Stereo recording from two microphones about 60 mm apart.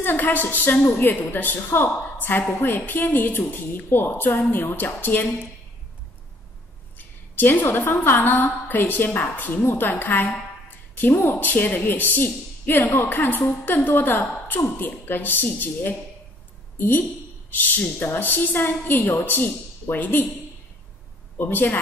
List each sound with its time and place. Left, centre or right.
0.0 s a woman's voice: left
7.0 s a woman's voice: left
21.4 s a woman's voice: left